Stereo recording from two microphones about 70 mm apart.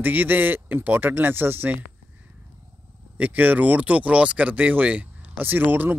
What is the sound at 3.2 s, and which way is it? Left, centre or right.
Speech, right.